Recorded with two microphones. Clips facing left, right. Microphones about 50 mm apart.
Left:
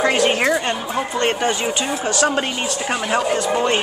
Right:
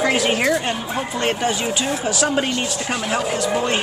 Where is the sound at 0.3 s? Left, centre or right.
Centre.